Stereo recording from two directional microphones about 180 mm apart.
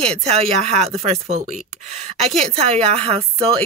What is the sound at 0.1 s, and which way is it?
A woman's voice, 35° right (ahead or behind).